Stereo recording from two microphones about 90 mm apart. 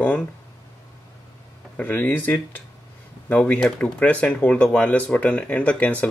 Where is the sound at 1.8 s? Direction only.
20° left (ahead or behind).